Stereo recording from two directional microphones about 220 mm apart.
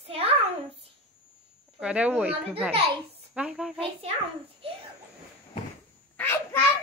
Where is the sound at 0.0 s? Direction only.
25° right (ahead or behind).